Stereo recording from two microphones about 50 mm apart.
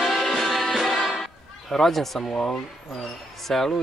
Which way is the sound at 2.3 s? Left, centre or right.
Centre.